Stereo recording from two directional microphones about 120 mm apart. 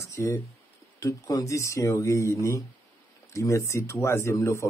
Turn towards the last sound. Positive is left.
turn(degrees=25)  # may be behind; listen again after turning